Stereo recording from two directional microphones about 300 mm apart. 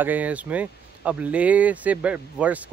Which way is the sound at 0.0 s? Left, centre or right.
Centre.